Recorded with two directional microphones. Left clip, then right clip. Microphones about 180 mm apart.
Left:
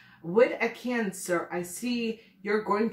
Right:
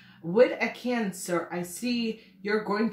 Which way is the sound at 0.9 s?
25° right (ahead or behind).